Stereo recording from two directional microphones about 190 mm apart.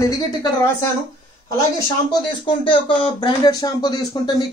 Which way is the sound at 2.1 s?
25° left (ahead or behind).